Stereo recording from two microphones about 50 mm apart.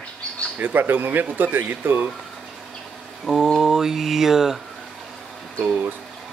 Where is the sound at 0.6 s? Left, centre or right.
Right.